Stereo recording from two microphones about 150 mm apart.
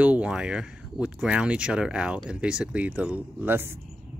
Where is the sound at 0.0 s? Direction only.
10° right (ahead or behind).